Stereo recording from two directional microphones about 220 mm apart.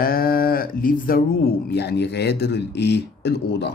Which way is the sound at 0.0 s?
40° left (ahead or behind).